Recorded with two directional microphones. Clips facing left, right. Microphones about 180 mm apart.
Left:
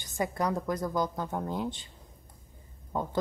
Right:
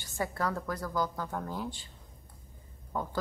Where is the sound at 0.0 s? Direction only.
20° left (ahead or behind).